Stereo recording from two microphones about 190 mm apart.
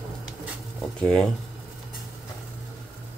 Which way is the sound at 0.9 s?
5° left (ahead or behind).